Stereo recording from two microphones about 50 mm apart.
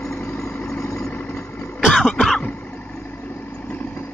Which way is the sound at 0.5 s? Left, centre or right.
Centre.